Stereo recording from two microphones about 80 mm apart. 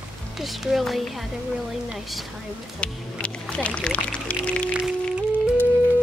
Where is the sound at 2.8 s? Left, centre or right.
Centre.